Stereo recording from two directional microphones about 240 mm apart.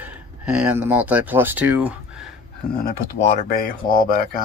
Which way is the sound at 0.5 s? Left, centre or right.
Centre.